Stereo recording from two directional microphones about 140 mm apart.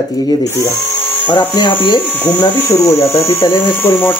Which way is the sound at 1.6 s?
30° left (ahead or behind).